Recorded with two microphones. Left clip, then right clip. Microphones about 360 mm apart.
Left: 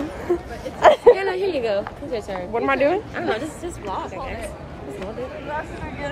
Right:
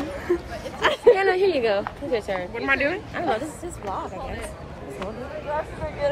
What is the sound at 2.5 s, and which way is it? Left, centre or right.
Speech, centre.